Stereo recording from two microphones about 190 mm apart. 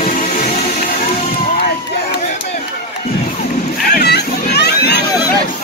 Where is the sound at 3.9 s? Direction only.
60° left (ahead or behind).